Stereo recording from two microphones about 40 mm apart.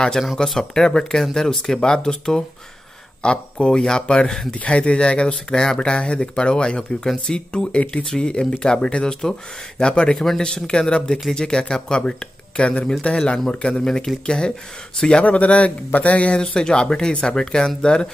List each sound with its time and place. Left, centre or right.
0.6 s speech: centre
4.6 s speech: left
15.2 s speech: left
16.3 s speech: centre